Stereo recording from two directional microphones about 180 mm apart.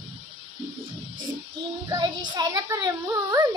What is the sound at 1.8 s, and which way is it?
Speech, 20° right (ahead or behind).